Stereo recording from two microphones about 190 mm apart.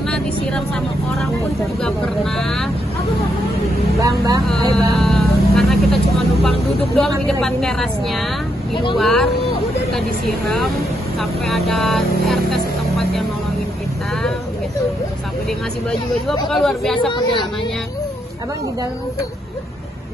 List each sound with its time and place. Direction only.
0.1 s vehicle: 5° left (ahead or behind)
4.5 s vehicle: centre (ahead or behind)
7.0 s speech: centre (ahead or behind)
15.9 s speech: centre (ahead or behind)
17.1 s a woman's voice: 25° left (ahead or behind)